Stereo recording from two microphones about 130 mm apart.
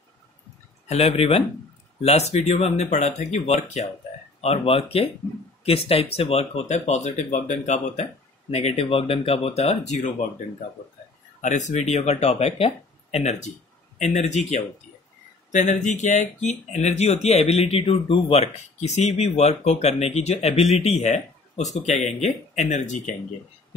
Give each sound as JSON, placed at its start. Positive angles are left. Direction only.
{"t": 0.8, "sound": "speech", "side_deg": 55}
{"t": 11.4, "sound": "speech", "side_deg": 65}